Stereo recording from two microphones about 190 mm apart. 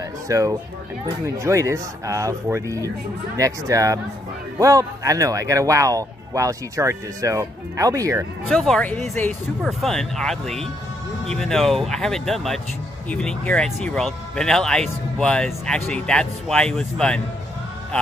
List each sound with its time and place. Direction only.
0.3 s speech: 15° right (ahead or behind)
8.5 s speech: centre (ahead or behind)